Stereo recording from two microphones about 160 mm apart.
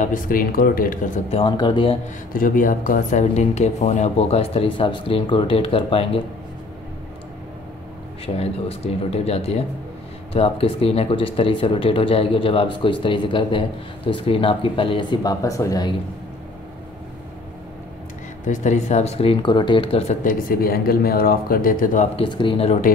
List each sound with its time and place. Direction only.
0.0 s speech: 60° left (ahead or behind)
1.3 s speech: 30° left (ahead or behind)
2.3 s speech: 60° left (ahead or behind); by 6.2 s 35° left (ahead or behind)
8.4 s speech: 40° left (ahead or behind); by 15.9 s 20° left (ahead or behind)
18.5 s speech: 50° left (ahead or behind)
20.2 s speech: 65° left (ahead or behind)
22.1 s speech: 30° left (ahead or behind)